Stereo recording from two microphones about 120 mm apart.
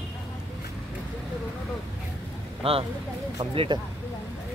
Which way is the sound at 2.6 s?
50° right (ahead or behind).